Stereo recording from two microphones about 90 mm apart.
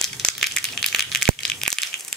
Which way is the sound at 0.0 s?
5° left (ahead or behind).